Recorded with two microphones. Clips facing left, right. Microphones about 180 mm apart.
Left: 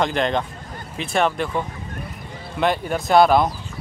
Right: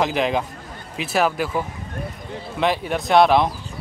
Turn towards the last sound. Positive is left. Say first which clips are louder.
# even
turn(degrees=0)  # may be behind; listen again after turning